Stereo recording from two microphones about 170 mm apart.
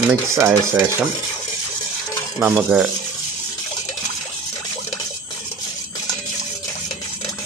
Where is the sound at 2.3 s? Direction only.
10° right (ahead or behind).